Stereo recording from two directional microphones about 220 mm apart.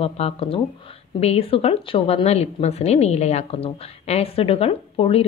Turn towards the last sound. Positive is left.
turn(degrees=25)  # may be behind; listen again after turning